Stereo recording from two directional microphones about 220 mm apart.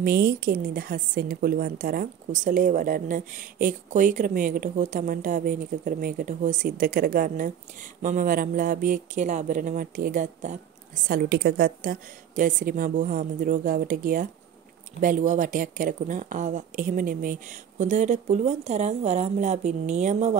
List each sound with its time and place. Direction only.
0.0 s a woman's voice: 45° right (ahead or behind)
11.1 s a woman's voice: 45° right (ahead or behind)